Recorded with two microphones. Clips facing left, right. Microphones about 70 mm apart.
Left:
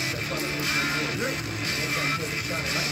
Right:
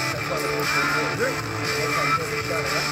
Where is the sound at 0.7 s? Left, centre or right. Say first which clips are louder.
Right 5 dB; right.